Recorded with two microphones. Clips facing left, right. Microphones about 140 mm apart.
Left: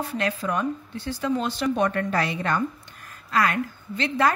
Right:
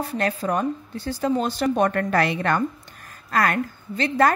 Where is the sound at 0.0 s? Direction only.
40° right (ahead or behind); by 2.6 s 65° right (ahead or behind).